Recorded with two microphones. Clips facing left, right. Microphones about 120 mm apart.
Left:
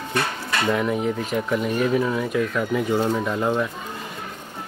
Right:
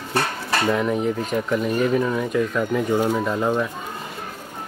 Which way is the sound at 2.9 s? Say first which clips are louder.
Right 1 dB; 10° right (ahead or behind).